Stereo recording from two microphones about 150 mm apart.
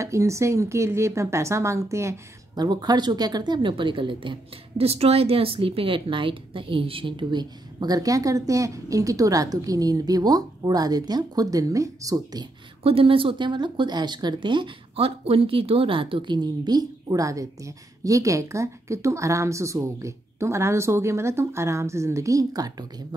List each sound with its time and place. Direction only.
0.0 s speech: 20° right (ahead or behind)
12.8 s speech: 40° right (ahead or behind)